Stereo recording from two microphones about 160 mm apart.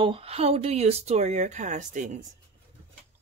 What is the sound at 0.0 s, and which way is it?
Speech, 35° right (ahead or behind).